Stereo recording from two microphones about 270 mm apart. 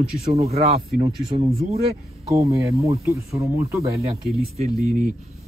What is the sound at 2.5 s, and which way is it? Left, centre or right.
Speech, centre.